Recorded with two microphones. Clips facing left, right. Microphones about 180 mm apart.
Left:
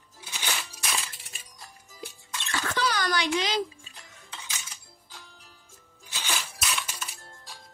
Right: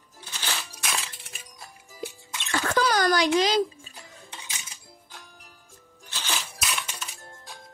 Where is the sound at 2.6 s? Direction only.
45° right (ahead or behind).